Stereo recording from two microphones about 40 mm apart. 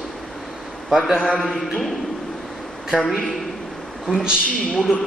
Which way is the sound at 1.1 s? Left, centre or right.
Right.